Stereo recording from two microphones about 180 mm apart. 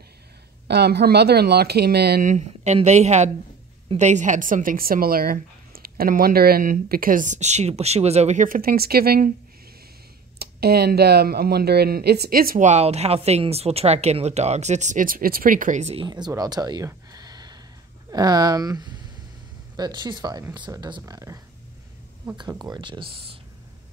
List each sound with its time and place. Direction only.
0.7 s speech: 65° right (ahead or behind)
2.2 s speech: 40° right (ahead or behind); by 9.3 s 60° right (ahead or behind)
10.4 s speech: 60° right (ahead or behind); by 16.1 s 35° right (ahead or behind)
16.1 s speech: 20° right (ahead or behind)
22.4 s speech: 20° right (ahead or behind)